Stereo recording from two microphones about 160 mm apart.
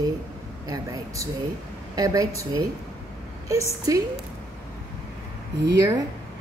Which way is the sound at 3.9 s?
20° right (ahead or behind).